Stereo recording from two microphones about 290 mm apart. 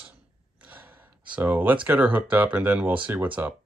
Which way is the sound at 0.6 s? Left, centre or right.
Centre.